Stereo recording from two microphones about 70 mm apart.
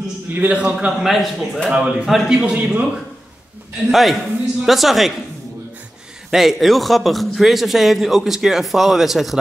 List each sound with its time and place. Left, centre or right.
0.3 s a man's voice: right
1.2 s a man's voice: centre
1.7 s a man's voice: centre
3.9 s a man's voice: centre
6.3 s a man's voice: centre